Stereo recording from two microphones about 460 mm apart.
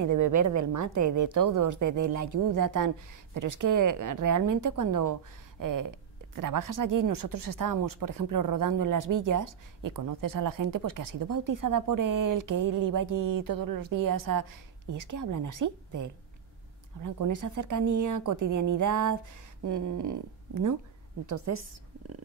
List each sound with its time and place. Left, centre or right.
0.0 s speech: right